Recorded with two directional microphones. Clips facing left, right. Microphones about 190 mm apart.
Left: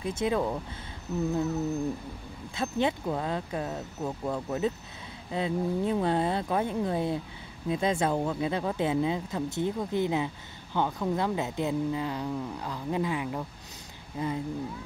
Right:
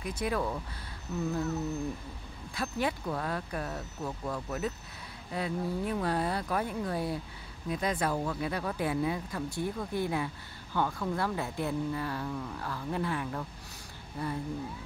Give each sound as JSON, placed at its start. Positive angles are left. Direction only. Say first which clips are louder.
{"t": 0.0, "sound": "speech", "louder": "left 4 dB", "side_deg": 25}
{"t": 2.5, "sound": "speech", "louder": "left 4 dB", "side_deg": 25}